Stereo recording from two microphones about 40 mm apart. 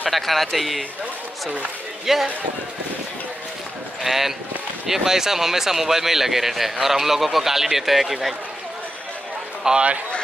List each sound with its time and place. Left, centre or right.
0.1 s a man's voice: centre
2.1 s speech: centre
4.0 s speech: centre
9.6 s a man's voice: centre